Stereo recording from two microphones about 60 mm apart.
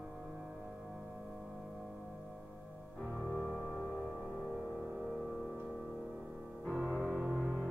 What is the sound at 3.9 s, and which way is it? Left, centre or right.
Music, centre.